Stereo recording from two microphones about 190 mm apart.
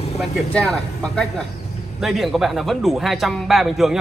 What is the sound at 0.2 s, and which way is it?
A man's voice, 5° left (ahead or behind).